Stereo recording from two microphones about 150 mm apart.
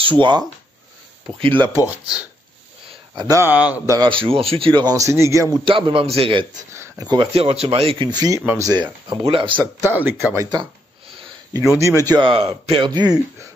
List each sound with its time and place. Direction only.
0.0 s speech: 30° right (ahead or behind)
2.9 s a sound: 25° right (ahead or behind)
3.4 s speech: 10° right (ahead or behind)
3.9 s speech: 30° right (ahead or behind)
5.7 s speech: 35° right (ahead or behind)
6.8 s a sound: 25° right (ahead or behind)
7.3 s speech: 40° right (ahead or behind)
9.8 s speech: 15° right (ahead or behind)
11.8 s speech: 20° right (ahead or behind)